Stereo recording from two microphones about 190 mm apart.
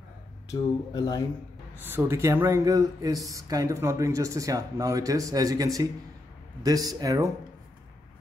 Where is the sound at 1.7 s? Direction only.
10° right (ahead or behind).